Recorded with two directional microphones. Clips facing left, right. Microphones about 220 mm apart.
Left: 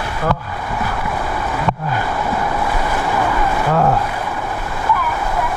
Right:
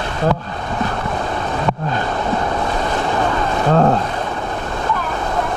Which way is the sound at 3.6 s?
30° right (ahead or behind).